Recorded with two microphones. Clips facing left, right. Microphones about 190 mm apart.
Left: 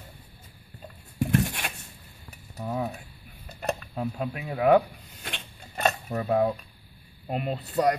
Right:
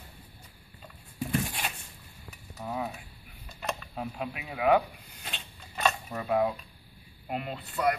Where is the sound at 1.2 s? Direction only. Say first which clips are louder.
Left 5 dB; 65° left (ahead or behind).